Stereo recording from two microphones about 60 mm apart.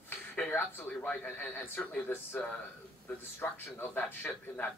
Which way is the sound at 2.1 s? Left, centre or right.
Left.